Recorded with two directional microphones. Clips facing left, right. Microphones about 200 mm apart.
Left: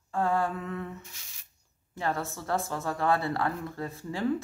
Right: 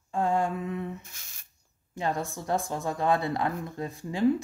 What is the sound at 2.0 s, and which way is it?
A woman's voice, 15° right (ahead or behind).